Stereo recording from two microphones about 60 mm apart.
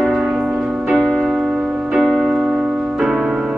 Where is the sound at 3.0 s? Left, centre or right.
Centre.